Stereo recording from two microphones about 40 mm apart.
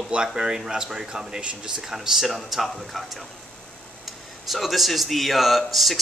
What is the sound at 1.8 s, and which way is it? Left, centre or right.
A man's voice, centre.